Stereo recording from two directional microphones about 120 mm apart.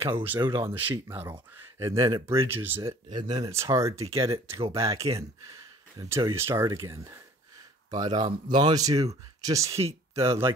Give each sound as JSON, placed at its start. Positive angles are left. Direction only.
{"t": 0.5, "sound": "speech", "side_deg": -20}
{"t": 2.8, "sound": "speech", "side_deg": -35}
{"t": 3.6, "sound": "speech", "side_deg": -25}
{"t": 7.9, "sound": "speech", "side_deg": -35}
{"t": 9.7, "sound": "speech", "side_deg": -55}